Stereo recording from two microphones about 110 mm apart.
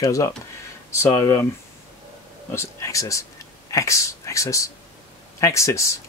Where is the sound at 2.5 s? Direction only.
30° left (ahead or behind).